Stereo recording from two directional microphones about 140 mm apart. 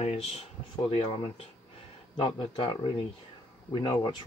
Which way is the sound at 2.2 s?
40° left (ahead or behind).